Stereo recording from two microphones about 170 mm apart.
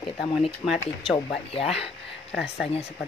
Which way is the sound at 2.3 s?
Centre (ahead or behind).